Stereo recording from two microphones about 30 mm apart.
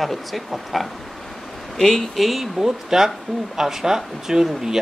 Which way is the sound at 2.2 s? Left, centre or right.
Centre.